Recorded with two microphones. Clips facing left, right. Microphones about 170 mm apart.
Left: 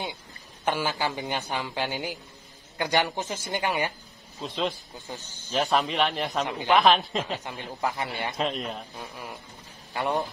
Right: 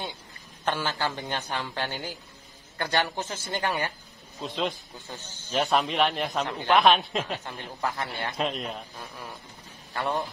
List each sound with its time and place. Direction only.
0.7 s speech: 10° left (ahead or behind)
4.4 s speech: centre (ahead or behind)
4.9 s speech: 15° left (ahead or behind)
5.6 s speech: centre (ahead or behind)
7.4 s speech: 15° left (ahead or behind)
8.4 s speech: centre (ahead or behind)
8.9 s speech: 15° left (ahead or behind)